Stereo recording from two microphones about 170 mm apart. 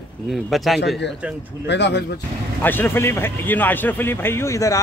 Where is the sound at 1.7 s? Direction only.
90° left.